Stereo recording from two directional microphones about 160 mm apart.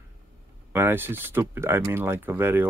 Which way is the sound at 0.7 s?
15° right (ahead or behind).